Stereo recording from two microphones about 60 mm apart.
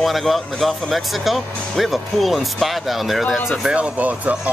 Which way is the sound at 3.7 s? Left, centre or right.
Right.